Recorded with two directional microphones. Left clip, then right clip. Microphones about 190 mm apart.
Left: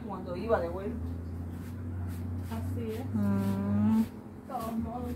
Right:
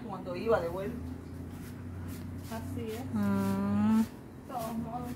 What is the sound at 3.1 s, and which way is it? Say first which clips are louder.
Speech: right 2 dB; 25° right (ahead or behind).